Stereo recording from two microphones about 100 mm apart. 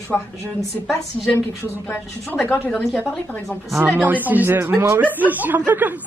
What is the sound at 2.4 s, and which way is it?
Speech, 20° left (ahead or behind).